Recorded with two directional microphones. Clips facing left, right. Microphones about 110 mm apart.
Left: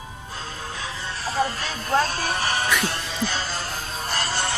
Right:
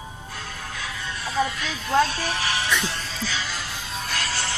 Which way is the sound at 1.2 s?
40° left (ahead or behind).